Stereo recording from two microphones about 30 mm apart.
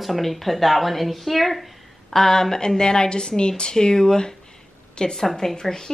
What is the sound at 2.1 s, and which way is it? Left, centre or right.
A woman's voice, centre.